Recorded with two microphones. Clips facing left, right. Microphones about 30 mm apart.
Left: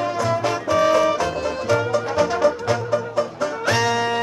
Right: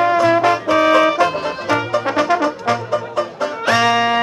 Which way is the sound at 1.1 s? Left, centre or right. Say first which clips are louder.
Right 5 dB; right.